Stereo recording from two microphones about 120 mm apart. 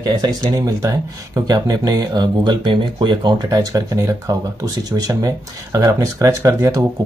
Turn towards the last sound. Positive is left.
turn(degrees=-30)  # may be behind; listen again after turning